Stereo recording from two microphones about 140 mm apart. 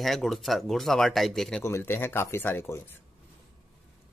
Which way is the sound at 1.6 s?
20° left (ahead or behind).